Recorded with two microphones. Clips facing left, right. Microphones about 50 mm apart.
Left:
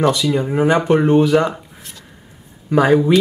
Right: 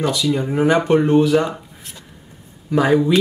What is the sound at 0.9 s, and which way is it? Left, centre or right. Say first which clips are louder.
Speech: left 1 dB; centre.